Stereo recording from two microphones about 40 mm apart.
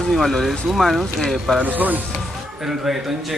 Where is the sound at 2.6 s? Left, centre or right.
Centre.